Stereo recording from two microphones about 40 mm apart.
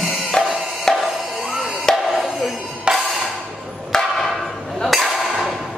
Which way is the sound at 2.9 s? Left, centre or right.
Right.